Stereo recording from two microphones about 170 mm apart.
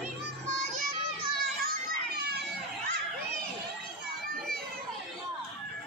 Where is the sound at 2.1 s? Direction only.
70° right (ahead or behind).